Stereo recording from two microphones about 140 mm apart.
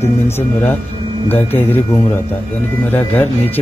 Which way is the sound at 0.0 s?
15° left (ahead or behind).